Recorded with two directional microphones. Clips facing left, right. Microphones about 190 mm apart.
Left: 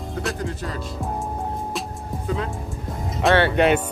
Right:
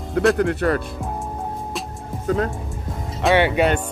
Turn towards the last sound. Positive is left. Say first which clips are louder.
# right 1 dB
turn(degrees=-15)  # may be behind; listen again after turning